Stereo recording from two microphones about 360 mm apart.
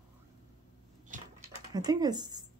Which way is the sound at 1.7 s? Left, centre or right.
Centre.